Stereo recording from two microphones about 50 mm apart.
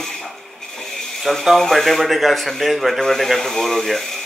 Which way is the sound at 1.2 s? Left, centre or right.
Centre.